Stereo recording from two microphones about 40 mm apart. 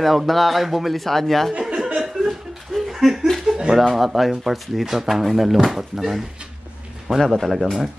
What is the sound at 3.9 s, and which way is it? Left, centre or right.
A man's voice, centre.